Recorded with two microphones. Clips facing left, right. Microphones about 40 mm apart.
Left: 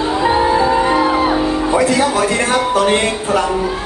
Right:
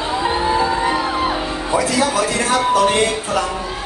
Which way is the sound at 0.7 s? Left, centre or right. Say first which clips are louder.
Left 5 dB; left.